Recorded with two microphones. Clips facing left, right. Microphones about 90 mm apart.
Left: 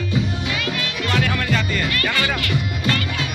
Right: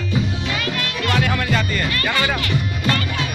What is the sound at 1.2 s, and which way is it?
Music, 15° right (ahead or behind).